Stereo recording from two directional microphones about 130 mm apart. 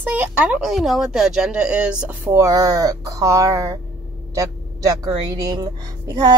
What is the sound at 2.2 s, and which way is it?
Speech, 20° right (ahead or behind).